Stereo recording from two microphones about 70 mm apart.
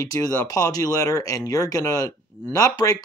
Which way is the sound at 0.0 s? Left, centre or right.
Left.